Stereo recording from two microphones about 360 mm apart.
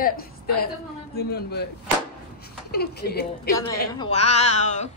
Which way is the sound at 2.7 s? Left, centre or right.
Left.